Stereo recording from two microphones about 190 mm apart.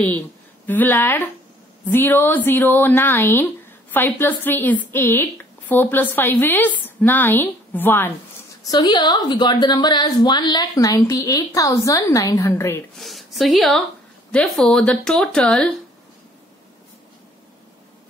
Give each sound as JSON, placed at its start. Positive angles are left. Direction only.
{"t": 0.7, "sound": "a woman's voice", "side_deg": 10}
{"t": 12.9, "sound": "a woman's voice", "side_deg": 0}